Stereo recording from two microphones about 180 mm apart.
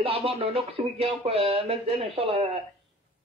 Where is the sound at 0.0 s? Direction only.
30° right (ahead or behind).